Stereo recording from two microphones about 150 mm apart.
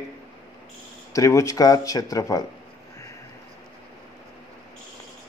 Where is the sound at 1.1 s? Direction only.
20° left (ahead or behind).